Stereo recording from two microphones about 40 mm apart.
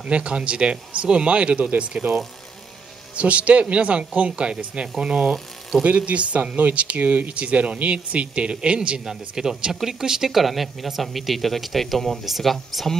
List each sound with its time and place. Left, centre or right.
0.0 s speech: right
2.0 s speech: right
3.2 s speech: right
5.9 s speech: right
9.0 s speech: centre
10.3 s speech: centre